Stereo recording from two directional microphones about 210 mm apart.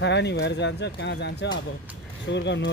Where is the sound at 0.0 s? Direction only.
55° left (ahead or behind).